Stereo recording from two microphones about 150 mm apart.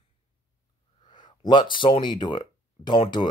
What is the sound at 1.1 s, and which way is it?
Speech, 30° left (ahead or behind).